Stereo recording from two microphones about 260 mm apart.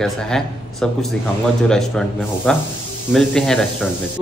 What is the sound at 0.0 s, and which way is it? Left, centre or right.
Speech, centre.